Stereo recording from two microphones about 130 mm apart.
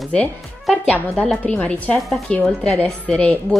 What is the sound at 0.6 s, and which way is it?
Speech, 10° left (ahead or behind).